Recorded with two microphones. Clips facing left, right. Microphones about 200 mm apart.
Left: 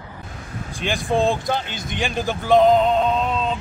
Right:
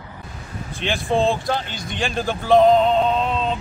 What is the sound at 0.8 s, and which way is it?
Speech, centre (ahead or behind).